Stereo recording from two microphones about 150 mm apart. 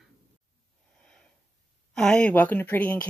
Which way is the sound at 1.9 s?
5° left (ahead or behind).